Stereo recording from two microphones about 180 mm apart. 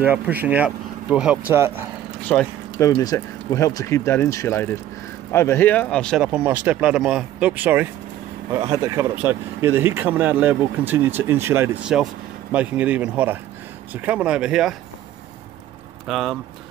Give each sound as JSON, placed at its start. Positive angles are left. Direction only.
{"t": 0.0, "sound": "speech", "side_deg": -10}
{"t": 2.2, "sound": "speech", "side_deg": 10}
{"t": 16.1, "sound": "speech", "side_deg": 0}